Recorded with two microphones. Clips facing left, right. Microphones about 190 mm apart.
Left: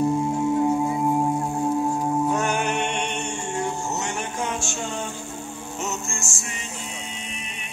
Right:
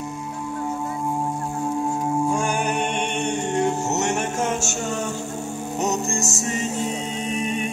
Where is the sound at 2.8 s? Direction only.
50° right (ahead or behind).